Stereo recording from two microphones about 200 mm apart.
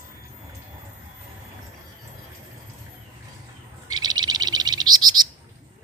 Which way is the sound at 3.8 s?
20° right (ahead or behind).